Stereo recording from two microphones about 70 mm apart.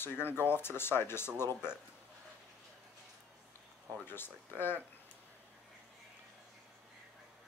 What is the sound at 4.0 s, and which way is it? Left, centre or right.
Speech, left.